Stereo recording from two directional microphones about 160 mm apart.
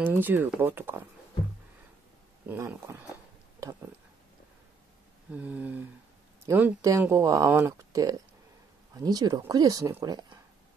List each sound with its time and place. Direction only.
0.0 s speech: 10° right (ahead or behind)
2.4 s speech: 10° right (ahead or behind)
3.6 s a sound: 20° right (ahead or behind)
5.3 s speech: 10° right (ahead or behind); by 10.4 s 25° right (ahead or behind)